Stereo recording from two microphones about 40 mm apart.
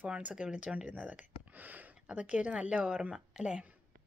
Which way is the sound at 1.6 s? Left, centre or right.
Right.